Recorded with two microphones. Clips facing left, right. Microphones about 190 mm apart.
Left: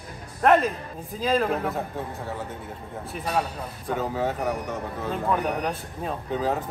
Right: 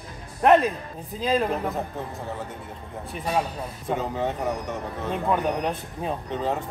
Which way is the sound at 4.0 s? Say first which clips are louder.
Left 3 dB; centre (ahead or behind).